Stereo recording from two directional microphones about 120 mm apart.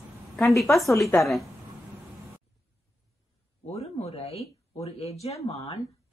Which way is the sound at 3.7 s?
55° left (ahead or behind).